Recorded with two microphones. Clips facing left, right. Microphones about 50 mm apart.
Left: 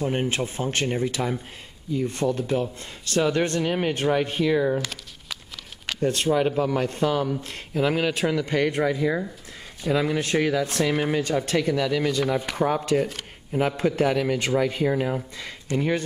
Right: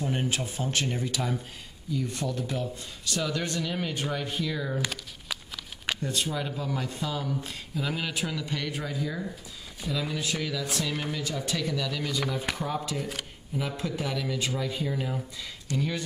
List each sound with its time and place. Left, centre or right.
0.0 s speech: left
4.7 s a sound: centre
5.9 s speech: left
11.7 s speech: left
12.5 s speech: left